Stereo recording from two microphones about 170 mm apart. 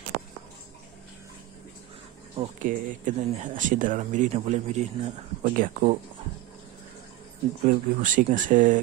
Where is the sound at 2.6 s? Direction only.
50° right (ahead or behind).